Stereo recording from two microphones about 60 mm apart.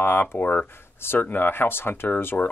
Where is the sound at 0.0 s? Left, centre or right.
Left.